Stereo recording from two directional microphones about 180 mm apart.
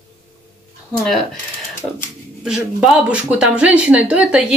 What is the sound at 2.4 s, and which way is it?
A woman's voice, 5° right (ahead or behind).